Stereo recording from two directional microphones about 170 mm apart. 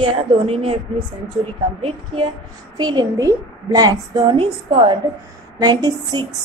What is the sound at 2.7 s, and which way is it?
A woman's voice, 25° right (ahead or behind).